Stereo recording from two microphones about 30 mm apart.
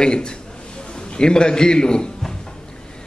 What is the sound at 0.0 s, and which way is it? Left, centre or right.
A man's voice, left.